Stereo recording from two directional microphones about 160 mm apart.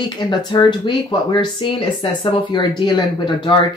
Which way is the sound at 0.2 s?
30° left (ahead or behind).